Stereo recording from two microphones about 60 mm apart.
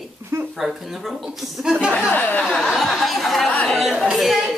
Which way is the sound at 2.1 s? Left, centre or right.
Left.